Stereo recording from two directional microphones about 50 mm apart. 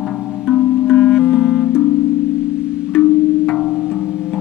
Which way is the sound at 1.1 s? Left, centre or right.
Centre.